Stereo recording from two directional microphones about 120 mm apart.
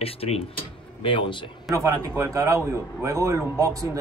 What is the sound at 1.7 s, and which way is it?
A man's voice, 25° right (ahead or behind).